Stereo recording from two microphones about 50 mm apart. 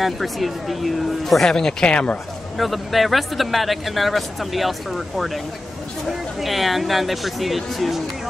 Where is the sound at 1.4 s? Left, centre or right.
Centre.